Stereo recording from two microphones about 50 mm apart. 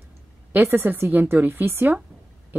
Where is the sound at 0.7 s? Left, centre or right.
Right.